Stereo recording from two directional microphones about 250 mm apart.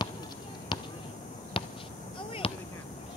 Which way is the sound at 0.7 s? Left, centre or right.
Centre.